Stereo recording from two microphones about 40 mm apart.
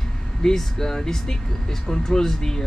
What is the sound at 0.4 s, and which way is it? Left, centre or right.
Speech, centre.